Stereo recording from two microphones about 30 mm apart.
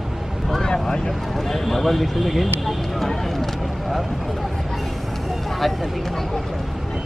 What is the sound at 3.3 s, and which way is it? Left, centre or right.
Vehicle, centre.